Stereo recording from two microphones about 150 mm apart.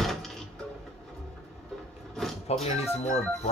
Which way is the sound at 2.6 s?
45° left (ahead or behind).